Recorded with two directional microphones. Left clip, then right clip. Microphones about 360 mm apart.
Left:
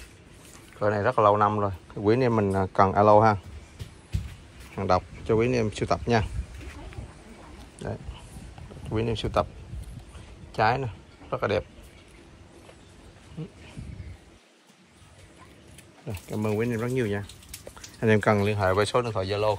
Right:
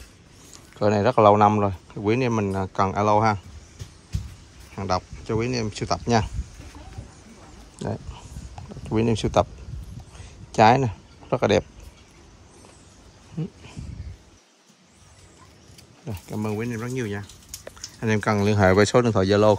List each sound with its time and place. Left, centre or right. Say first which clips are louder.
0.7 s speech: right 4 dB; centre
4.7 s speech: left 2 dB; centre
7.8 s speech: right 4 dB; centre
10.5 s speech: right 8 dB; centre
13.4 s speech: right 7 dB; centre
16.1 s speech: left 1 dB; centre